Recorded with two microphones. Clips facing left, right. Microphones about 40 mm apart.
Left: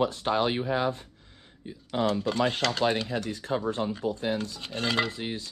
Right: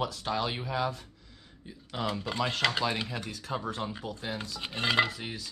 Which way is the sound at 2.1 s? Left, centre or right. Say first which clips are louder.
Left 4 dB; centre.